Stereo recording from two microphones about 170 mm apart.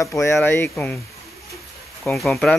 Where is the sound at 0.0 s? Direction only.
15° left (ahead or behind).